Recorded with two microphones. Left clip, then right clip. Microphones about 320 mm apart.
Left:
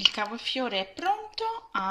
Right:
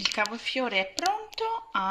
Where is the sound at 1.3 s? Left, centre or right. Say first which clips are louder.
Right 1 dB; centre.